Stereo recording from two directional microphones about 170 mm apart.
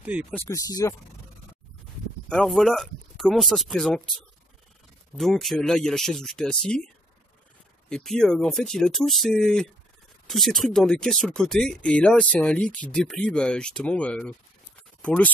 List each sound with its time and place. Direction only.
0.0 s speech: 5° right (ahead or behind)
0.3 s speech: 15° left (ahead or behind)
2.2 s speech: 5° left (ahead or behind)
5.1 s speech: centre (ahead or behind)
7.9 s speech: 5° left (ahead or behind)